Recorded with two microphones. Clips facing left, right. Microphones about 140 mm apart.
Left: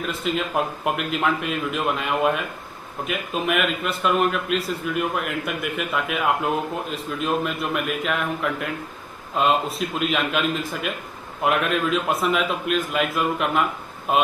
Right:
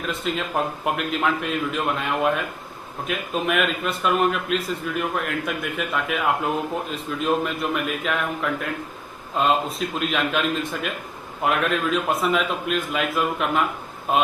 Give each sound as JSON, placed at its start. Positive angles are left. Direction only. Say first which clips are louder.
{"t": 0.0, "sound": "a man's voice", "louder": "left 1 dB", "side_deg": 0}